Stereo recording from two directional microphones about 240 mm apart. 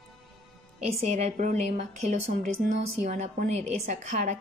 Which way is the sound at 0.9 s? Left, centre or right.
Right.